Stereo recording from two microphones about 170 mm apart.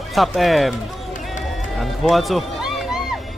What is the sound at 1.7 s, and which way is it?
Music, centre (ahead or behind).